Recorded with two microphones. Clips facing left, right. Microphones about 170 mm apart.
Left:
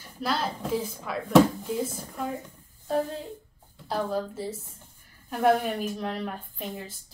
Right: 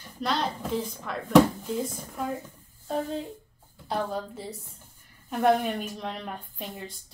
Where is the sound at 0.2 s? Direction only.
5° left (ahead or behind).